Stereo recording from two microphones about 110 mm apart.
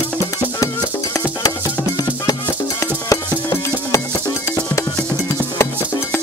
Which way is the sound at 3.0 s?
30° left (ahead or behind).